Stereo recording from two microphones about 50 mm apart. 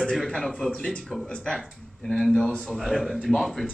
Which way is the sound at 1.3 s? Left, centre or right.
Centre.